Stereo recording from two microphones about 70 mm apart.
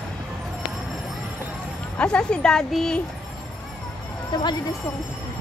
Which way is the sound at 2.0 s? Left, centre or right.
Centre.